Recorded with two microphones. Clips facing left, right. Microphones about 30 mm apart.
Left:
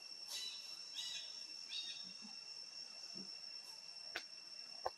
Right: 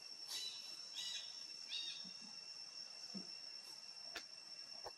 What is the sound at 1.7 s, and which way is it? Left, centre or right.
Bird, centre.